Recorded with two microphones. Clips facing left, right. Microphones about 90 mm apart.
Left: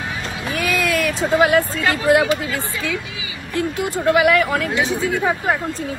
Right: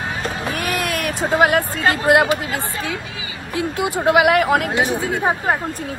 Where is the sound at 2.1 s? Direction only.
25° right (ahead or behind).